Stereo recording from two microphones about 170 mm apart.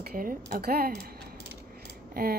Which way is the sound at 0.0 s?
55° right (ahead or behind).